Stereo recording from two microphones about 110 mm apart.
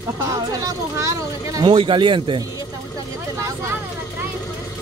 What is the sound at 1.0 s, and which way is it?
Speech, 30° right (ahead or behind).